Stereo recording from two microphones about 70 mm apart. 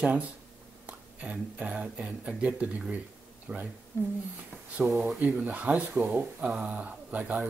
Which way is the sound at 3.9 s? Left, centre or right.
Left.